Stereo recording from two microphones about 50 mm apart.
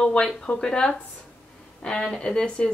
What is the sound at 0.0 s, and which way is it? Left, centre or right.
A woman's voice, centre.